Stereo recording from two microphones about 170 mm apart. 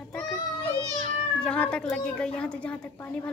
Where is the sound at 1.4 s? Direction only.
5° left (ahead or behind).